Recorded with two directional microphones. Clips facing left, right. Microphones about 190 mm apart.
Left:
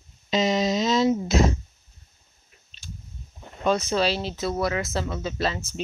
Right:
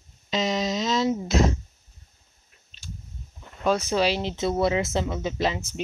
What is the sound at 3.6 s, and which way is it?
Speech, 10° right (ahead or behind).